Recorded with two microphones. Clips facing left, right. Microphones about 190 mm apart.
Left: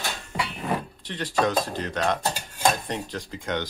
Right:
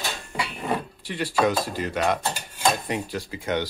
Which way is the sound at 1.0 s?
10° right (ahead or behind).